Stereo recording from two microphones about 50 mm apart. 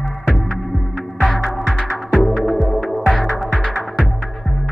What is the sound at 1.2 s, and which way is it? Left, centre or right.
Music, centre.